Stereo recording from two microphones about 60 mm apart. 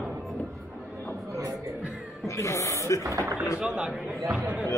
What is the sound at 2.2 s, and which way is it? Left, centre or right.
Speech, left.